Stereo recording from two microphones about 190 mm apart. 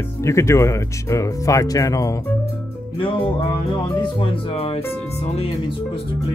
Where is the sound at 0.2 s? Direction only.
15° left (ahead or behind).